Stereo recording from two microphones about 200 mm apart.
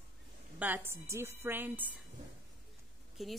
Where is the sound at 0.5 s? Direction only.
10° right (ahead or behind).